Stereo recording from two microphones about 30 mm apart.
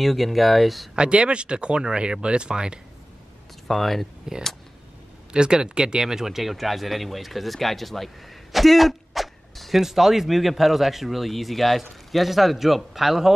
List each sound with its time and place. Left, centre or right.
0.0 s speech: centre
0.9 s speech: right
3.6 s speech: centre
5.3 s speech: right
6.4 s speech: centre